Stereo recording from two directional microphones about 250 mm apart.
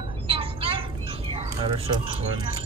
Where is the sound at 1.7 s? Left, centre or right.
Right.